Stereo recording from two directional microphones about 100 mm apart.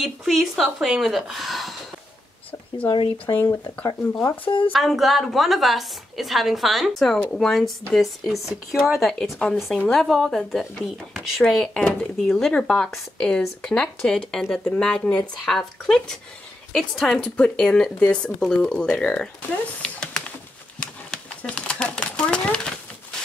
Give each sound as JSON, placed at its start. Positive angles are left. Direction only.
{"t": 0.0, "sound": "speech", "side_deg": 0}
{"t": 2.8, "sound": "speech", "side_deg": 60}
{"t": 3.8, "sound": "speech", "side_deg": 30}
{"t": 4.5, "sound": "speech", "side_deg": 55}
{"t": 4.7, "sound": "speech", "side_deg": 0}
{"t": 19.8, "sound": "a sound", "side_deg": 5}